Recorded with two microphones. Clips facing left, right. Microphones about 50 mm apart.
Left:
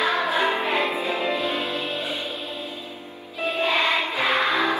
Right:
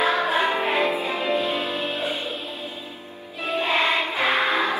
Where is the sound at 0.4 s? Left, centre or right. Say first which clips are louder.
Even; centre.